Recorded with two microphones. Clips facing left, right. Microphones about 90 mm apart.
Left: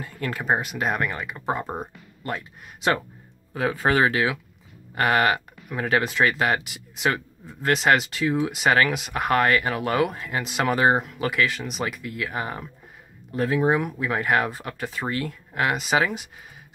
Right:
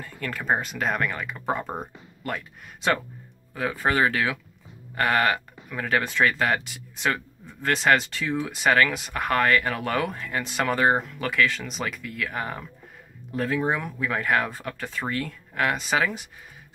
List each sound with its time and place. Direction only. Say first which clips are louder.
0.0 s speech: left 2 dB; 15° left (ahead or behind)
3.5 s speech: left 3 dB; 25° left (ahead or behind)
4.1 s speech: left 2 dB; 10° left (ahead or behind)